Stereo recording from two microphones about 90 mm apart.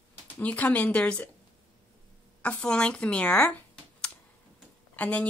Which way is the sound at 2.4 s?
10° left (ahead or behind).